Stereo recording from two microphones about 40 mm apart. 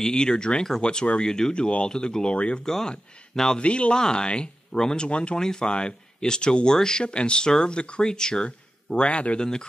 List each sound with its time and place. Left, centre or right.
0.0 s speech: centre
2.6 s speech: centre
3.5 s speech: left
5.4 s speech: centre
8.5 s speech: left
9.4 s speech: centre